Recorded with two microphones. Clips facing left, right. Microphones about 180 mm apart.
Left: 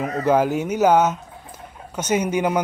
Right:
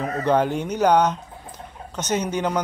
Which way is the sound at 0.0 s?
5° left (ahead or behind).